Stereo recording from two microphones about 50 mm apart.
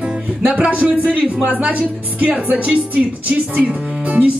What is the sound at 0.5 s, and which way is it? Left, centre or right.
Speech, right.